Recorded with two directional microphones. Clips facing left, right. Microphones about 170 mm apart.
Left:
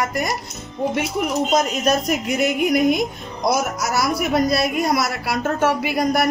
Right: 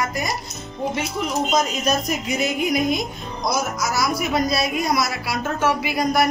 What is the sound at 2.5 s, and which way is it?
A woman's voice, 60° left (ahead or behind).